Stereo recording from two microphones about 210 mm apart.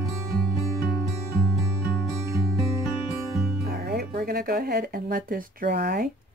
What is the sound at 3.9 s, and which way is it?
Speech, 45° right (ahead or behind).